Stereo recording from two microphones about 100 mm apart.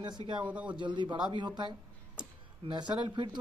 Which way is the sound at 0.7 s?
50° right (ahead or behind).